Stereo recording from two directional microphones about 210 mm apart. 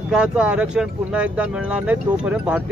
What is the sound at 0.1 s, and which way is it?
Speech, 5° right (ahead or behind).